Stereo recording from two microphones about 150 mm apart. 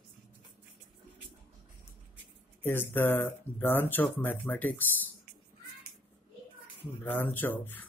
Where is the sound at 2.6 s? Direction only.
15° left (ahead or behind).